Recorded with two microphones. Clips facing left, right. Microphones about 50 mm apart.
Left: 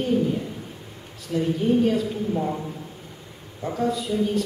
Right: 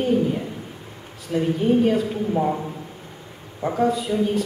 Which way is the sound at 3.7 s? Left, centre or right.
Centre.